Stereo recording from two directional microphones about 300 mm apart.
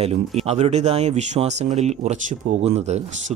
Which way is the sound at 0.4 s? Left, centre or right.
Right.